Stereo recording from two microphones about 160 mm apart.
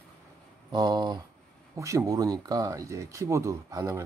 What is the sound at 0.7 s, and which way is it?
Speech, 25° right (ahead or behind).